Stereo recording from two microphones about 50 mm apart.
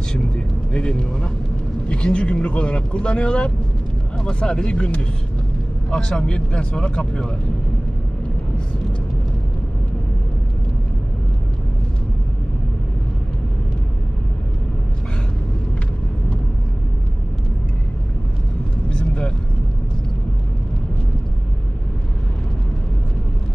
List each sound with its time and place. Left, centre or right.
0.7 s speech: centre
18.9 s vehicle: centre